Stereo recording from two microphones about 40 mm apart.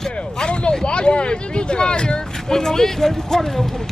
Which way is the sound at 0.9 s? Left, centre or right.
Left.